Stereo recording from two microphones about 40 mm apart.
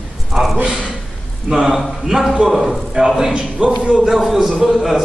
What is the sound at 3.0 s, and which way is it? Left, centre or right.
Speech, right.